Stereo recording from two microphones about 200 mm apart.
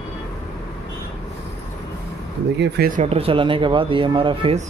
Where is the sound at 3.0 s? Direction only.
30° right (ahead or behind).